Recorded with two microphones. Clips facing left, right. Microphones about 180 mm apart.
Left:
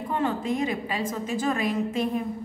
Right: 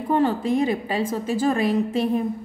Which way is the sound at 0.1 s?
35° right (ahead or behind).